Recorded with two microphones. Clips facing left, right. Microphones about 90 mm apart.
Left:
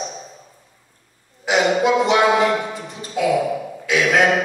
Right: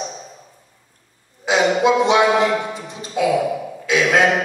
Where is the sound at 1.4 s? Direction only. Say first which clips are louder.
Right 1 dB; 20° right (ahead or behind).